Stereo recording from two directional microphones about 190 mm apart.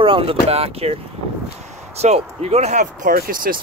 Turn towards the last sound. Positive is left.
turn(degrees=-50)  # may be behind; listen again after turning